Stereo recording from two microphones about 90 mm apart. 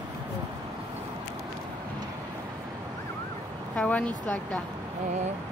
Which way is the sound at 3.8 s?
15° left (ahead or behind).